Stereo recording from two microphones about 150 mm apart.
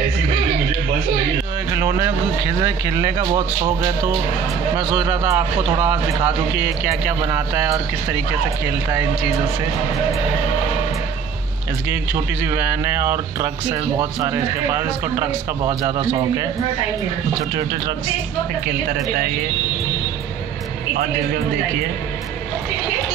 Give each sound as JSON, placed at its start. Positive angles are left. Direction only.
{"t": 1.8, "sound": "a man's voice", "side_deg": -25}
{"t": 4.7, "sound": "a man's voice", "side_deg": -20}
{"t": 12.5, "sound": "a man's voice", "side_deg": -20}
{"t": 15.6, "sound": "a man's voice", "side_deg": -30}